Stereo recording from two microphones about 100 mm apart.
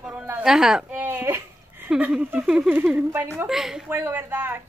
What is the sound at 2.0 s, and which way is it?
Speech, 15° right (ahead or behind).